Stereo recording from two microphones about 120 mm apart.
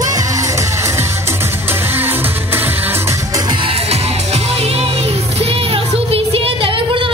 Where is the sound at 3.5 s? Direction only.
50° right (ahead or behind).